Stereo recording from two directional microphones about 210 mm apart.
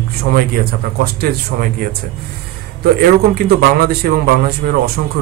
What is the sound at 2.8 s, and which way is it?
Speech, 45° right (ahead or behind).